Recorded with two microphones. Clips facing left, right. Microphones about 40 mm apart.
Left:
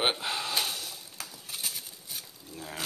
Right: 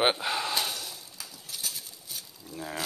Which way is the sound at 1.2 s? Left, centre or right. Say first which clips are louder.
Left 4 dB; left.